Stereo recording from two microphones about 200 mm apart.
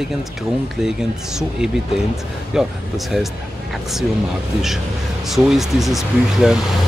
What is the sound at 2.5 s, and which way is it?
Speech, centre (ahead or behind).